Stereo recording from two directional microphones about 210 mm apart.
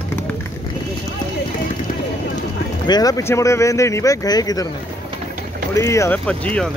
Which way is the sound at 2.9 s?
15° left (ahead or behind).